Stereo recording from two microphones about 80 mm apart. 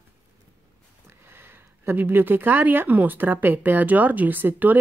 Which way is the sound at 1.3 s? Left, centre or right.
Right.